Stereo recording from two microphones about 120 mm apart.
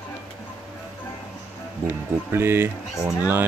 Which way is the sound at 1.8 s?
20° right (ahead or behind).